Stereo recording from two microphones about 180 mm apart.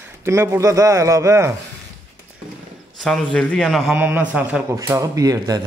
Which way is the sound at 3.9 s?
10° right (ahead or behind).